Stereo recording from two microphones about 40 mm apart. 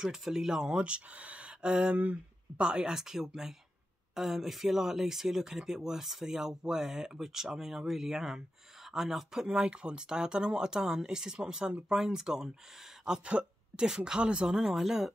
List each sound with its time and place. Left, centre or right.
0.0 s speech: centre; by 1.7 s right
1.7 s speech: right
2.0 s speech: right
2.6 s speech: right
9.5 s speech: right